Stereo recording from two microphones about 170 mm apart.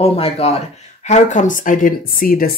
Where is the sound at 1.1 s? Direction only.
45° left (ahead or behind).